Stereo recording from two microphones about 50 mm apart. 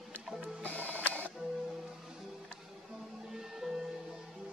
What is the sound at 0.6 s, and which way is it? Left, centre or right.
Music, left.